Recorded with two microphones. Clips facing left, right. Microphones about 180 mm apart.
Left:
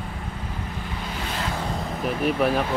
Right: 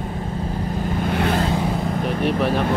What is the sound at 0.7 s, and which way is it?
Vehicle, 45° right (ahead or behind).